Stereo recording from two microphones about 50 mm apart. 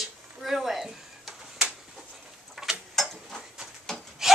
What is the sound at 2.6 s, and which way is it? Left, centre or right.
Tick-tock, centre.